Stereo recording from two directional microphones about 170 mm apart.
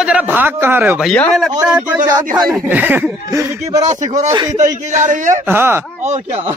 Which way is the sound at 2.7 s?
10° right (ahead or behind).